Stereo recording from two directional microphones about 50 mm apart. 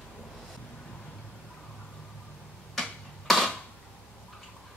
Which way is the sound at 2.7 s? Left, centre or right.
Centre.